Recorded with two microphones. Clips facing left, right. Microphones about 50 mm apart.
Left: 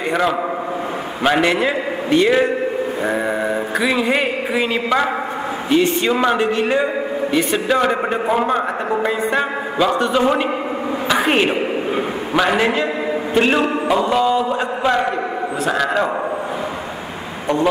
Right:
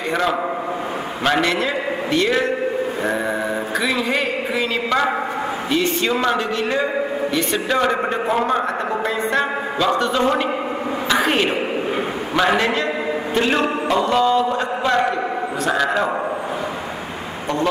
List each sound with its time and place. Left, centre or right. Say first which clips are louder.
1.2 s a man's voice: left 3 dB; centre
1.5 s a man's voice: left 2 dB; left
3.8 s a man's voice: left 4 dB; centre
9.0 s music: left 1 dB; centre
10.1 s a man's voice: left 2 dB; centre
11.2 s a man's voice: left 2 dB; centre
12.5 s a man's voice: left 2 dB; centre
15.6 s a man's voice: left 1 dB; centre